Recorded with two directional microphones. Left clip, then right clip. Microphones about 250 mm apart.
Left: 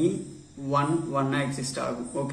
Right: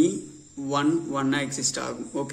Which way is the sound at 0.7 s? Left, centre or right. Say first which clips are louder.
Right 1 dB; right.